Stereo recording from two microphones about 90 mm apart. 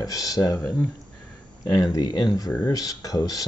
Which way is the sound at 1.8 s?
45° left (ahead or behind).